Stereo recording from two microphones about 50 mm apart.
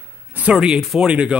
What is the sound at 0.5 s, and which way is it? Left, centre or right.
Speech, centre.